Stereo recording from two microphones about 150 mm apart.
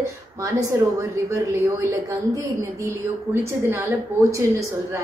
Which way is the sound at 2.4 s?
20° right (ahead or behind).